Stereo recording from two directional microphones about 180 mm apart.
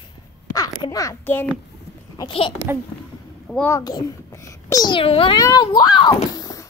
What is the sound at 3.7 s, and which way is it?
A child's voice, 20° left (ahead or behind).